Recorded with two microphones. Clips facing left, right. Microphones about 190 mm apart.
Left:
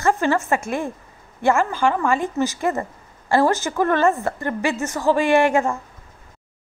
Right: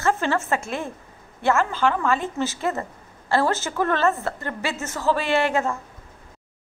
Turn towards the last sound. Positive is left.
turn(degrees=15)  # may be behind; listen again after turning